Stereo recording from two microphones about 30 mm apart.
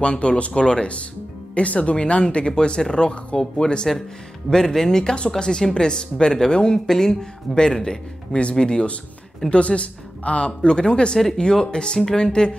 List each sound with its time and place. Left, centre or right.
0.0 s speech: left
2.0 s speech: left
8.3 s speech: left
8.5 s speech: left
9.5 s speech: left